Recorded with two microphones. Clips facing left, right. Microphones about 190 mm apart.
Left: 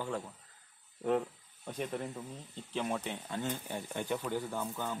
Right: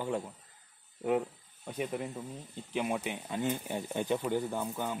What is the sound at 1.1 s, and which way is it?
Speech, 5° right (ahead or behind).